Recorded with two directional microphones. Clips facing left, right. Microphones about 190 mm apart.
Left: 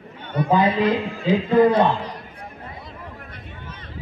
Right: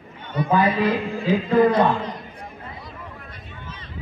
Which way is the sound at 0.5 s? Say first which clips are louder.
Left 1 dB; 20° left (ahead or behind).